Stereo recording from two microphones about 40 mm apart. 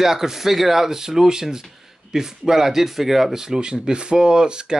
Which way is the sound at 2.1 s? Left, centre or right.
Centre.